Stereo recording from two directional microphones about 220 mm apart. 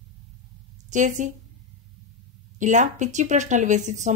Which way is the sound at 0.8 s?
35° right (ahead or behind).